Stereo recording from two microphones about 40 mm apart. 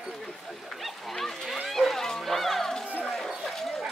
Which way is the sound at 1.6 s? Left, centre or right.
Centre.